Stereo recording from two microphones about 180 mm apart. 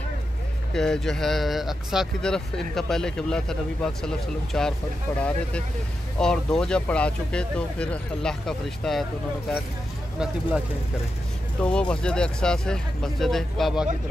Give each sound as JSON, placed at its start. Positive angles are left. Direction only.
{"t": 0.7, "sound": "speech", "side_deg": 5}
{"t": 6.1, "sound": "speech", "side_deg": 5}
{"t": 10.1, "sound": "speech", "side_deg": -5}
{"t": 11.6, "sound": "speech", "side_deg": 5}